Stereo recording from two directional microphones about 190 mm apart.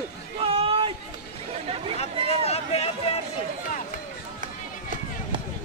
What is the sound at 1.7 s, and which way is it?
Chatter, 30° right (ahead or behind).